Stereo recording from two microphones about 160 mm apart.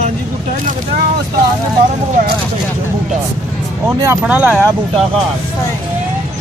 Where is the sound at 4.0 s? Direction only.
15° right (ahead or behind).